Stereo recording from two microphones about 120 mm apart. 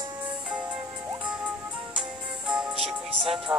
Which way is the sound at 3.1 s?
50° right (ahead or behind).